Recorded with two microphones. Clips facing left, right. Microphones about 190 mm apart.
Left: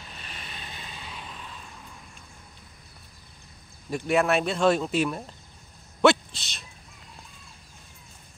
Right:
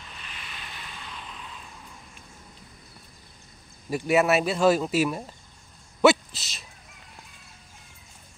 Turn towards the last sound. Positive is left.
turn(degrees=-5)  # may be behind; listen again after turning